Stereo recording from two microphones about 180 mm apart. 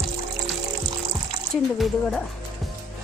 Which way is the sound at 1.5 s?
Centre (ahead or behind).